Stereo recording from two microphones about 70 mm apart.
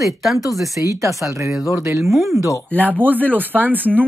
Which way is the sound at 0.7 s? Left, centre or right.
Right.